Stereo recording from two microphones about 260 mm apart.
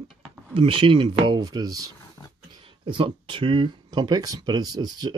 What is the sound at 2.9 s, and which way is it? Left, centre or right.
Speech, centre.